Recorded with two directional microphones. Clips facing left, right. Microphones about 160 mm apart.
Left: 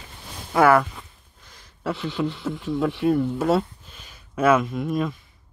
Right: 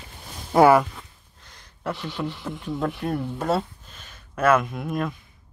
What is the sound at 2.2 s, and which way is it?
Speech, 5° left (ahead or behind).